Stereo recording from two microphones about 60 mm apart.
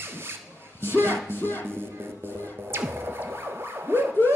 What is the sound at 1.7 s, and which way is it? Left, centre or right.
Music, right.